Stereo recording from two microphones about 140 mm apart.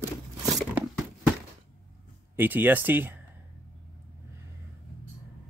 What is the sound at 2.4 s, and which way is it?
Speech, 15° right (ahead or behind).